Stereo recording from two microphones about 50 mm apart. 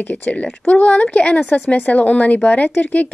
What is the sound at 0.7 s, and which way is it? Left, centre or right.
Speech, left.